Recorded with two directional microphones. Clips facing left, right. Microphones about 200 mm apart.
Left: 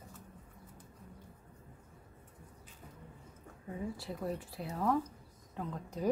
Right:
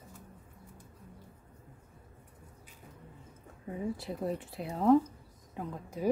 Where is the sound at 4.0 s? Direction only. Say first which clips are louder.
Right 4 dB; 20° right (ahead or behind).